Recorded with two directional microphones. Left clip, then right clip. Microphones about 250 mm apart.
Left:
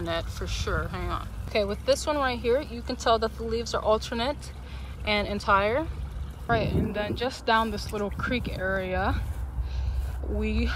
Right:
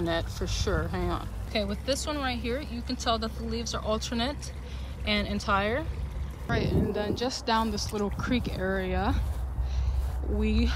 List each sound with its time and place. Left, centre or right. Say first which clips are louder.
0.1 s speech: even; centre
10.4 s speech: right 1 dB; centre